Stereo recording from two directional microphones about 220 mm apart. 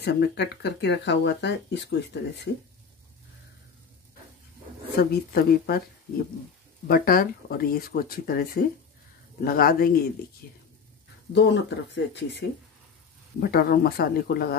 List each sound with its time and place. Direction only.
0.0 s speech: 50° left (ahead or behind)
4.9 s speech: 45° left (ahead or behind)
6.9 s speech: 40° left (ahead or behind)
11.3 s speech: 50° left (ahead or behind)